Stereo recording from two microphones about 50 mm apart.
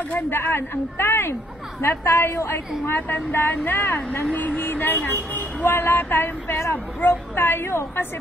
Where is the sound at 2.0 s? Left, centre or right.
Left.